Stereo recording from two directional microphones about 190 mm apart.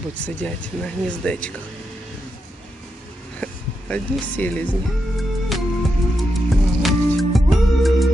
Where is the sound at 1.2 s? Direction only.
5° left (ahead or behind).